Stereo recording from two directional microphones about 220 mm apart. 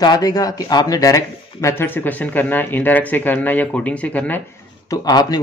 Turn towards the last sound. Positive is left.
turn(degrees=15)  # may be behind; listen again after turning